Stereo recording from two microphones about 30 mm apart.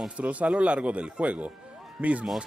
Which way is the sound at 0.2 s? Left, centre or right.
Right.